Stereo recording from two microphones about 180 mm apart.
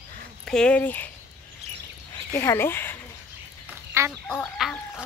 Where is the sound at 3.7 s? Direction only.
10° right (ahead or behind).